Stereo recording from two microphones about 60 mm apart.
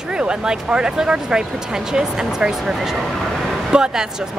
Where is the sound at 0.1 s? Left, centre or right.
Centre.